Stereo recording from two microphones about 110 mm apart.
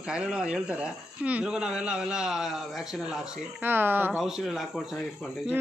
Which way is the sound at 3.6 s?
20° right (ahead or behind).